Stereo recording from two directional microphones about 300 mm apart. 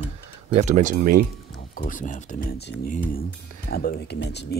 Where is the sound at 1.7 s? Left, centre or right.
Left.